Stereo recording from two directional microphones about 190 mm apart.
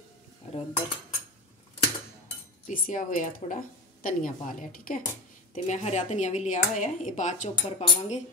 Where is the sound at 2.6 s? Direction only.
45° left (ahead or behind).